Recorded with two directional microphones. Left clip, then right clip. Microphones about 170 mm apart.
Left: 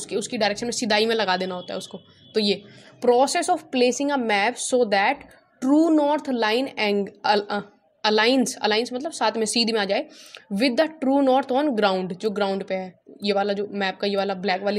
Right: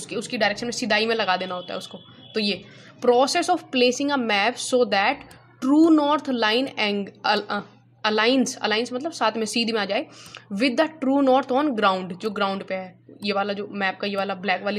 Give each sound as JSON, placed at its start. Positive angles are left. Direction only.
{"t": 0.0, "sound": "a woman's voice", "side_deg": 40}